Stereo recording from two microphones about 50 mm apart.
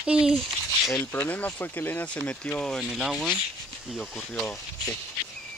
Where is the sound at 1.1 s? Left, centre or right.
Left.